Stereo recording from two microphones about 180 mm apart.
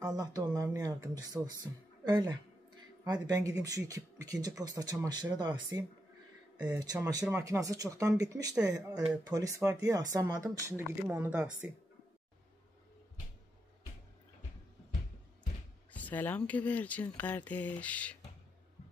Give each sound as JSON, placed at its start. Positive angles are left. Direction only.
{"t": 0.0, "sound": "speech", "side_deg": -20}
{"t": 15.9, "sound": "speech", "side_deg": 10}